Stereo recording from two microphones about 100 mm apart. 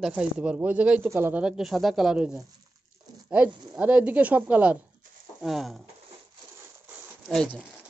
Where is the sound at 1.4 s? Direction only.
5° right (ahead or behind).